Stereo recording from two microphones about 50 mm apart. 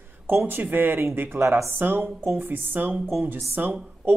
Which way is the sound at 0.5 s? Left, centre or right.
Right.